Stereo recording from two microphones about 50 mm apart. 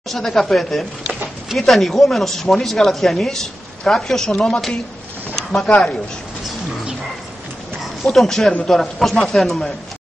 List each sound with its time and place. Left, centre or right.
0.1 s speech: centre
8.0 s speech: centre